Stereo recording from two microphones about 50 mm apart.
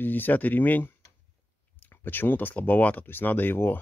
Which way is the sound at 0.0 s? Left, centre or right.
Left.